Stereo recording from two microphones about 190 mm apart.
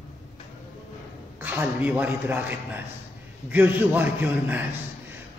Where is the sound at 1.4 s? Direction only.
10° right (ahead or behind).